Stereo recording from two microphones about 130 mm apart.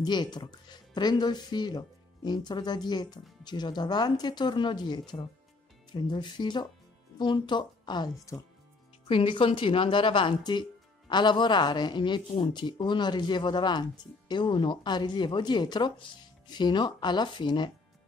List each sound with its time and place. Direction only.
0.0 s a woman's voice: 35° left (ahead or behind)